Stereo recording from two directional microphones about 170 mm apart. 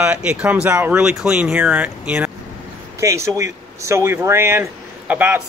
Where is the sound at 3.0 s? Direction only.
20° right (ahead or behind).